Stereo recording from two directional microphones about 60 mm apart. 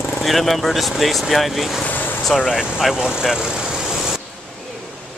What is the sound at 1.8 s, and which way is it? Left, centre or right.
Vehicle, left.